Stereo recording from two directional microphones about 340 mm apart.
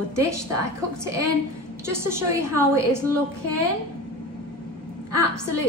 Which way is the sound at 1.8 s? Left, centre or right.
Centre.